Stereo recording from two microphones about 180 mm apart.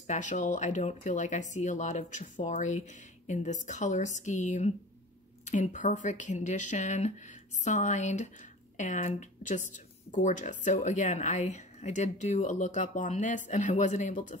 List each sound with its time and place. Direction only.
0.0 s a woman's voice: 40° left (ahead or behind)